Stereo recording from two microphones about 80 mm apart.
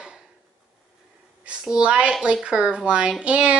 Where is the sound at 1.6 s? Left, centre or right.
Centre.